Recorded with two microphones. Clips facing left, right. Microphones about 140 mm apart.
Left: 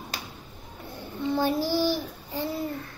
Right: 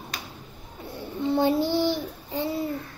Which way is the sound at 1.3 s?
20° right (ahead or behind).